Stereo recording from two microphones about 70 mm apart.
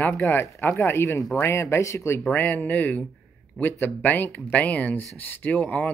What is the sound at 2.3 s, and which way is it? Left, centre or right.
Speech, left.